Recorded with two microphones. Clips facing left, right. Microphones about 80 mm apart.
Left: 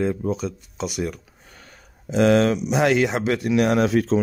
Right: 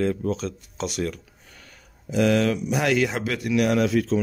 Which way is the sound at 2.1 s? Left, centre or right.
Left.